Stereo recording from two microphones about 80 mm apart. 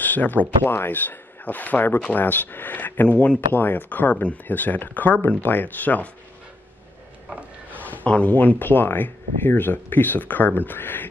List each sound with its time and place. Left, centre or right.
0.0 s speech: left
7.7 s speech: centre